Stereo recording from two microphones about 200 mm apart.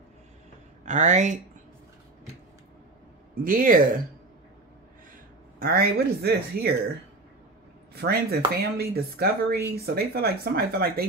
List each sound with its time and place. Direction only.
0.8 s speech: 35° right (ahead or behind)
3.4 s speech: 45° right (ahead or behind)
5.6 s speech: 50° right (ahead or behind)
7.9 s speech: 50° right (ahead or behind)